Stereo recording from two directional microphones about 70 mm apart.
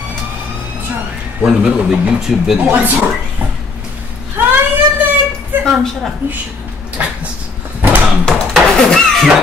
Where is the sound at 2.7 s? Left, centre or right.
Right.